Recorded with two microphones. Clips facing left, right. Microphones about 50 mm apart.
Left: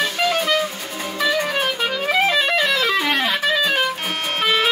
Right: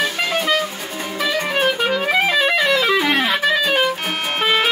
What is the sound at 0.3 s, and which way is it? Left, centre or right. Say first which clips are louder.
Music: even; centre.